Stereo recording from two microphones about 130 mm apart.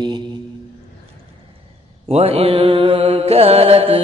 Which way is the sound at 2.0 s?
50° right (ahead or behind).